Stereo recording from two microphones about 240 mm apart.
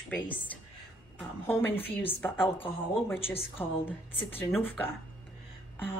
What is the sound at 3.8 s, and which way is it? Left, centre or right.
A woman's voice, centre.